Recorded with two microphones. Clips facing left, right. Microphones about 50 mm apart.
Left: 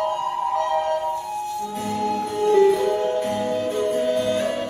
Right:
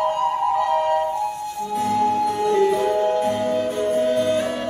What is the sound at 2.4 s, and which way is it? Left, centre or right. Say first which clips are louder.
Music: left 4 dB; left.